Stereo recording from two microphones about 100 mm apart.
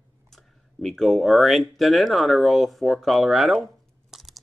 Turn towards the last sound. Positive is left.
turn(degrees=0)  # may be behind; listen again after turning